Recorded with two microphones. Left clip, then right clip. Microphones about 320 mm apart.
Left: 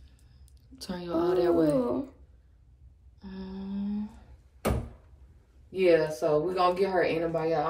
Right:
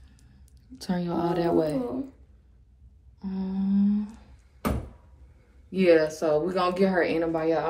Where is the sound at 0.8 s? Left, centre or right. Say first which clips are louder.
Right 1 dB; right.